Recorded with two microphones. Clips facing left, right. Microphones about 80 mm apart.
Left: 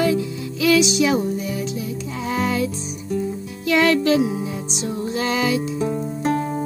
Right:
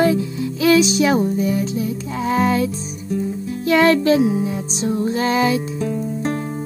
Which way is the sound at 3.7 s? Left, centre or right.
Right.